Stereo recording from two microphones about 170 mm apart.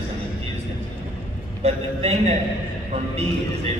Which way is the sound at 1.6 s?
40° right (ahead or behind).